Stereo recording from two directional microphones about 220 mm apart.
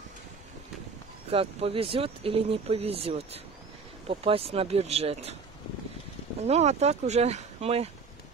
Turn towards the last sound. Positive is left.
turn(degrees=-30)  # may be behind; listen again after turning